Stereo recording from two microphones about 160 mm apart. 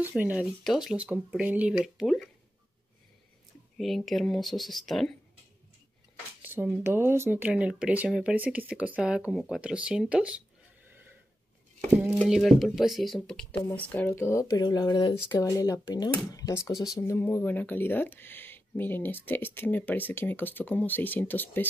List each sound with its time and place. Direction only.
0.0 s speech: 10° right (ahead or behind)
3.7 s speech: centre (ahead or behind)
6.4 s speech: 10° right (ahead or behind)
12.3 s speech: centre (ahead or behind)